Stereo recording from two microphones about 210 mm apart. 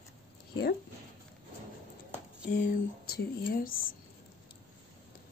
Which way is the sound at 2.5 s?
40° left (ahead or behind).